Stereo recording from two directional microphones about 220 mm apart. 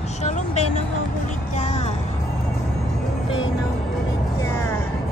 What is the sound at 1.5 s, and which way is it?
Music, 30° left (ahead or behind).